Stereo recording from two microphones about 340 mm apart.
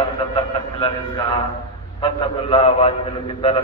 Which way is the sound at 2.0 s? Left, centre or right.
Centre.